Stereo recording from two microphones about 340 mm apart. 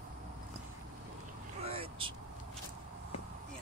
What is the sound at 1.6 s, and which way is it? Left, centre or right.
Vehicle, centre.